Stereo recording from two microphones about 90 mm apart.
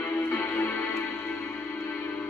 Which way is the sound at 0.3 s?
25° left (ahead or behind).